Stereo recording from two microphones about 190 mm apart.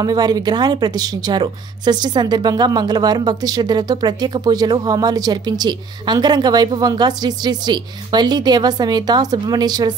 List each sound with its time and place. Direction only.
0.0 s speech: 20° right (ahead or behind)